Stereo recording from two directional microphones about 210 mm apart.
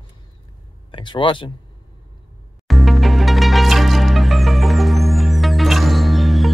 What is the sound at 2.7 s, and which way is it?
Music, centre (ahead or behind).